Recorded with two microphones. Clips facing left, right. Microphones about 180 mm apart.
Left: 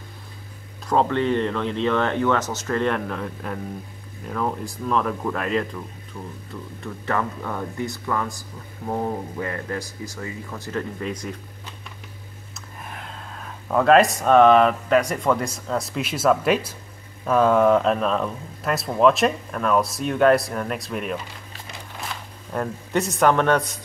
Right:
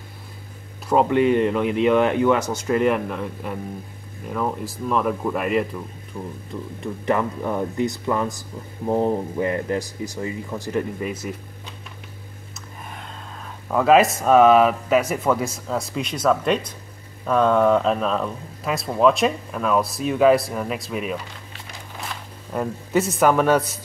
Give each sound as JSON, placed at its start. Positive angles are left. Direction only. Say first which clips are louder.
{"t": 0.8, "sound": "speech", "louder": "right 3 dB", "side_deg": -10}
{"t": 12.5, "sound": "speech", "louder": "even", "side_deg": 0}